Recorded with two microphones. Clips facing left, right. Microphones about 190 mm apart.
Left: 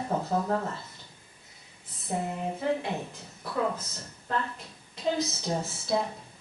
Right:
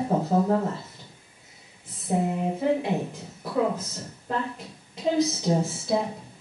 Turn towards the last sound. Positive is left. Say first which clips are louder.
# right 3 dB
turn(degrees=-10)  # may be behind; listen again after turning